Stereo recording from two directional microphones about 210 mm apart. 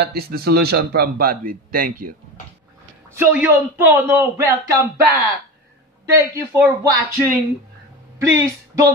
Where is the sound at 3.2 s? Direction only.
10° right (ahead or behind).